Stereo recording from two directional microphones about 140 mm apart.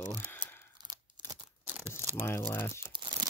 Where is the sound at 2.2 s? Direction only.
15° left (ahead or behind).